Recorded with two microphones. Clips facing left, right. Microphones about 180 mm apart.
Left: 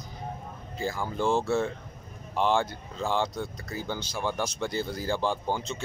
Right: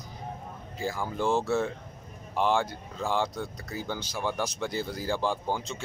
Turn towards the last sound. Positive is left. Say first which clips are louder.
# left 1 dB
turn(degrees=-10)  # may be behind; listen again after turning